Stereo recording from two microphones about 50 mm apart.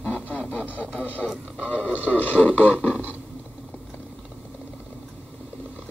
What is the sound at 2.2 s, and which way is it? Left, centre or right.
Speech, left.